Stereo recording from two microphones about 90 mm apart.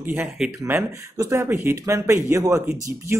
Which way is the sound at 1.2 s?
35° right (ahead or behind).